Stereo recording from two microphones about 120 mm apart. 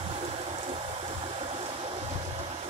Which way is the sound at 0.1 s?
60° right (ahead or behind).